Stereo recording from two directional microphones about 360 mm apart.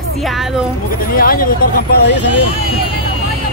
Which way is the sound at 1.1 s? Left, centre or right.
Left.